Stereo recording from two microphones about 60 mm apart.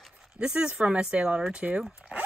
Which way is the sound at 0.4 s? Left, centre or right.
Centre.